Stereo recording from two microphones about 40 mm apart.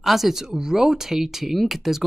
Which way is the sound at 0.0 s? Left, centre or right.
Centre.